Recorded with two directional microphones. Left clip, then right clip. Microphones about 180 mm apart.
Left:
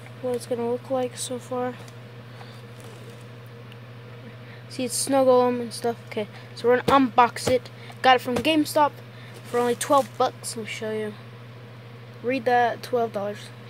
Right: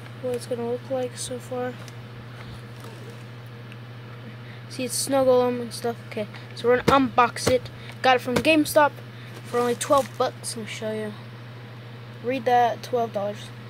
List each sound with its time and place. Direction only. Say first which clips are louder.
0.9 s speech: left 1 dB; 20° left (ahead or behind)
4.7 s a woman's voice: left 1 dB; 15° left (ahead or behind)
9.5 s speech: even; 10° left (ahead or behind)
12.3 s speech: right 1 dB; 15° left (ahead or behind)